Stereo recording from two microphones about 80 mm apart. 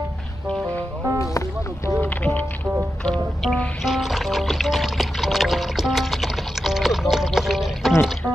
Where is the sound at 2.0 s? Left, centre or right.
Left.